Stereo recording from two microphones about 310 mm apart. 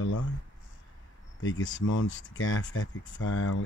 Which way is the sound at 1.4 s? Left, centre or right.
Left.